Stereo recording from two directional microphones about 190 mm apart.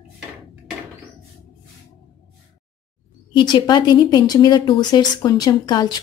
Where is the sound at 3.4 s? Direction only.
25° left (ahead or behind).